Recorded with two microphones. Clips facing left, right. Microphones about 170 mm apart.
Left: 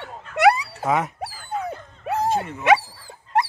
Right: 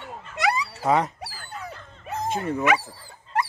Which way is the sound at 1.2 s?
60° left (ahead or behind).